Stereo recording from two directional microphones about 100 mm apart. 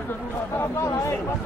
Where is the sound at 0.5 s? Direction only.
30° left (ahead or behind).